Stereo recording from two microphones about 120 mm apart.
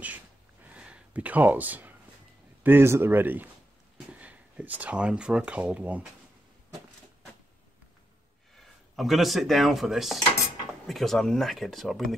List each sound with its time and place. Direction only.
0.0 s a sound: 15° right (ahead or behind)
2.6 s speech: 20° right (ahead or behind)
8.5 s speech: centre (ahead or behind)